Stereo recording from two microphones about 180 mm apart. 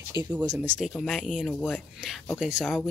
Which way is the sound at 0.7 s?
Centre (ahead or behind).